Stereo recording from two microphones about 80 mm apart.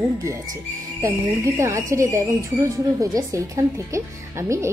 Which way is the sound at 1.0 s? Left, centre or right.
Right.